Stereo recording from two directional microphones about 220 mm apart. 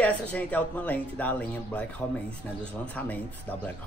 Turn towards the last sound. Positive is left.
turn(degrees=5)  # may be behind; listen again after turning